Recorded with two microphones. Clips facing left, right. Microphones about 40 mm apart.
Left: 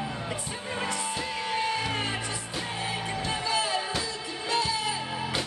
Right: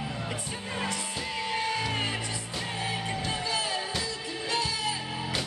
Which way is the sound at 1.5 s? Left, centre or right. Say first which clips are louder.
Left 2 dB; centre.